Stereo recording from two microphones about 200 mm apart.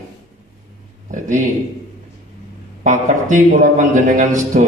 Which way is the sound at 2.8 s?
40° right (ahead or behind).